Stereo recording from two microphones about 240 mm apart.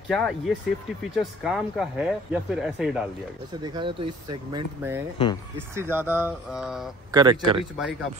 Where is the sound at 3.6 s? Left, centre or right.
Centre.